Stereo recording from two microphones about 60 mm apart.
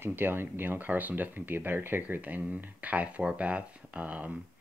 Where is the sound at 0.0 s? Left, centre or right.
Right.